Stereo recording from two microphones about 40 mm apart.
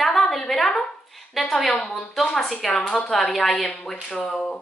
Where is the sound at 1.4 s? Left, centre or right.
Centre.